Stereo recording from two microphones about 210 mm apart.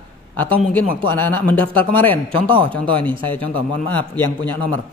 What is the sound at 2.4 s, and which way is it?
Speech, 25° right (ahead or behind).